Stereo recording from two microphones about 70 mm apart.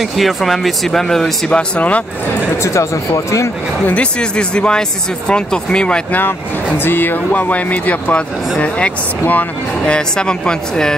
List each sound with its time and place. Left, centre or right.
0.2 s speech: centre
1.5 s speech: centre
2.6 s speech: left
3.8 s speech: centre
6.8 s speech: left
9.9 s speech: centre